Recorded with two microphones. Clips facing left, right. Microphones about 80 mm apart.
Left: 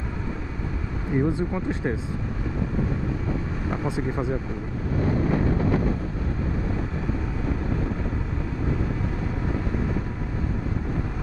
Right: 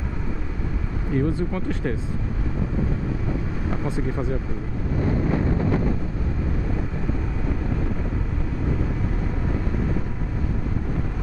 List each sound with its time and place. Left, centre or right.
1.1 s speech: centre
3.7 s speech: centre